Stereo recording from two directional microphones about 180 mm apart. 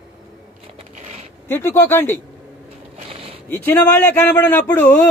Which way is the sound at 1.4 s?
10° left (ahead or behind).